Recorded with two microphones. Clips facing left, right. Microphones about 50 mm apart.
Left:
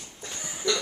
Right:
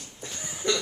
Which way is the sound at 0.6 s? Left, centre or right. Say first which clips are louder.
Even; right.